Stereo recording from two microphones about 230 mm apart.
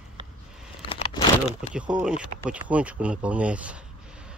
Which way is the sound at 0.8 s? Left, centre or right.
Left.